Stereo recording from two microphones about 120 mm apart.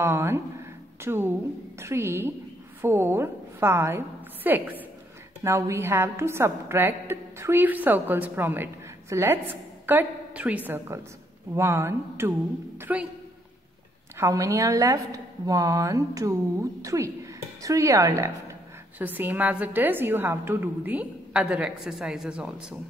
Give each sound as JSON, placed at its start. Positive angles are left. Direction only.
{"t": 0.0, "sound": "a woman's voice", "side_deg": -20}
{"t": 10.9, "sound": "a woman's voice", "side_deg": -25}
{"t": 14.1, "sound": "a woman's voice", "side_deg": -25}
{"t": 18.9, "sound": "a woman's voice", "side_deg": -15}